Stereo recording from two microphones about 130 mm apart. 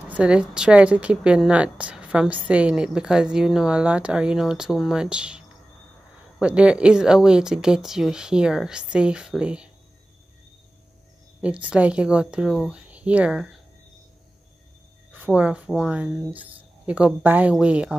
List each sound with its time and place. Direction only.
0.1 s a woman's voice: 10° right (ahead or behind)
6.4 s speech: 10° right (ahead or behind)
11.4 s a woman's voice: 10° right (ahead or behind)
15.1 s a woman's voice: 10° right (ahead or behind)